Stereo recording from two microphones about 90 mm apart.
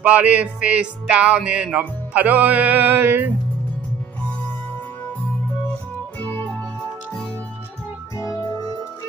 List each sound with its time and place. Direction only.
0.0 s music: 15° right (ahead or behind)
6.1 s music: 20° left (ahead or behind)